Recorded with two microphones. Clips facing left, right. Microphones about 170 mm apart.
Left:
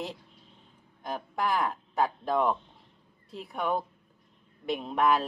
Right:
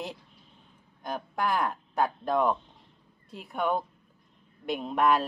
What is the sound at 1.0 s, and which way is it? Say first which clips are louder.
A woman's voice: right 1 dB; centre (ahead or behind).